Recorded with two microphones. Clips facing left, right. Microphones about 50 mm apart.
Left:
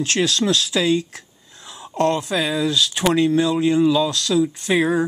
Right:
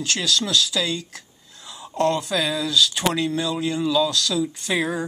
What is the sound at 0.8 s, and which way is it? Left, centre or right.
Speech, centre.